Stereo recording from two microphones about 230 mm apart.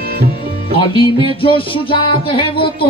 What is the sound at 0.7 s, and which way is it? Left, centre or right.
Music, left.